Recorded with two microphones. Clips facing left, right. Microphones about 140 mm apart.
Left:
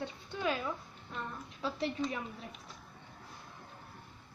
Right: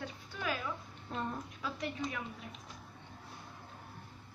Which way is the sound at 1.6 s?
30° left (ahead or behind).